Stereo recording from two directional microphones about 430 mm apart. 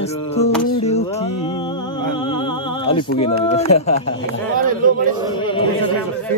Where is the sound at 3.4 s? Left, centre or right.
Centre.